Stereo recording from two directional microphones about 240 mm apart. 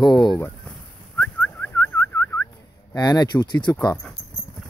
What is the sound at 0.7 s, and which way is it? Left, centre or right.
Turkey, centre.